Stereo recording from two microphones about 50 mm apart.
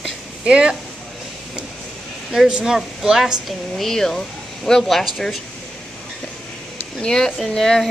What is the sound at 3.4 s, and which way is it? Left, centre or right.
Speech, centre.